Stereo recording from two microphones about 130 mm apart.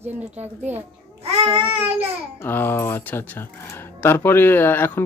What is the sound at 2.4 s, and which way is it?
Speech, 15° left (ahead or behind).